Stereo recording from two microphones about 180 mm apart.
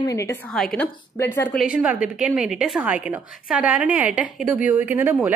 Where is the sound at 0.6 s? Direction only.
5° left (ahead or behind).